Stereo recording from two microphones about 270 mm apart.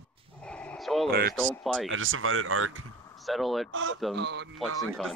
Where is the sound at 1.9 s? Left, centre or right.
Right.